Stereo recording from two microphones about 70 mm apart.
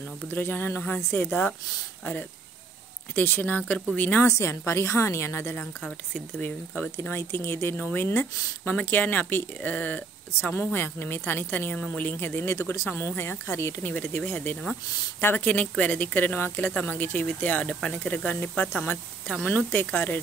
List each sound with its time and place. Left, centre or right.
0.3 s speech: left
3.2 s speech: left
4.3 s speech: left
14.4 s speech: centre